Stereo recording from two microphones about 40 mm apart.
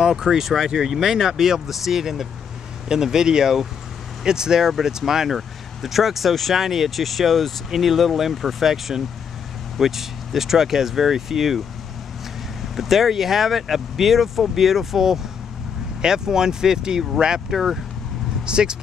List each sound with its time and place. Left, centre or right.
0.0 s speech: centre
12.7 s speech: centre
17.5 s speech: centre
18.4 s speech: right